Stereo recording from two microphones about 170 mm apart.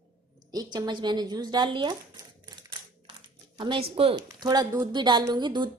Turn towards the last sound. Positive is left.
turn(degrees=-25)  # may be behind; listen again after turning